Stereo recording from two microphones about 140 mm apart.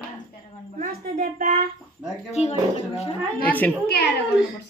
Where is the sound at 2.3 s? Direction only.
50° left (ahead or behind).